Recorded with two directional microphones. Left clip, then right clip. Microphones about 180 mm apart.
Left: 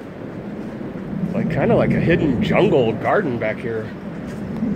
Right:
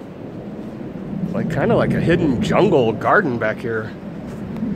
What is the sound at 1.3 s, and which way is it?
Speech, 20° right (ahead or behind).